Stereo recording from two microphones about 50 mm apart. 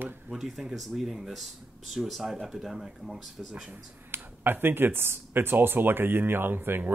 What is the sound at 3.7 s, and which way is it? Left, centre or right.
Speech, right.